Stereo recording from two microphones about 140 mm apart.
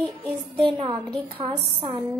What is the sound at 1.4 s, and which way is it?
Speech, 35° right (ahead or behind).